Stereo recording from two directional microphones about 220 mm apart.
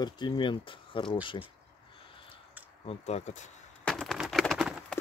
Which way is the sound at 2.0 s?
25° left (ahead or behind).